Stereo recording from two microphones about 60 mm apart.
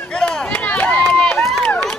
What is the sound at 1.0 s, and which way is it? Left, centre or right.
Run, centre.